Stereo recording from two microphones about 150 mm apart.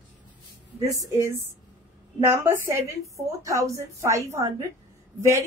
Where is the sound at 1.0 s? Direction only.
20° right (ahead or behind).